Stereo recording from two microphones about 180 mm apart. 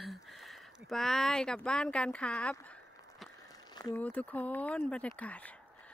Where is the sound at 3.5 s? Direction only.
20° left (ahead or behind).